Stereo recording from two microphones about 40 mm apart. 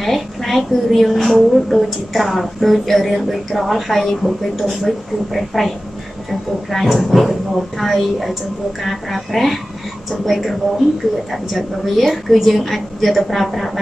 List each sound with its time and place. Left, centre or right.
0.0 s a woman's voice: centre
6.7 s a woman's voice: centre
11.5 s a woman's voice: centre